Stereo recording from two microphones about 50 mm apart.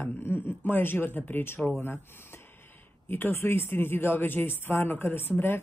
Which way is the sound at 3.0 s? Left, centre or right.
Left.